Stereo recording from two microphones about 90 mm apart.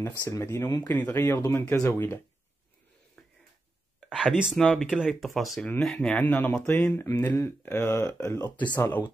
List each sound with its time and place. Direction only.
0.2 s speech: 35° left (ahead or behind)
3.2 s a sound: 5° left (ahead or behind)
4.1 s speech: 5° right (ahead or behind)
6.1 s speech: 20° left (ahead or behind)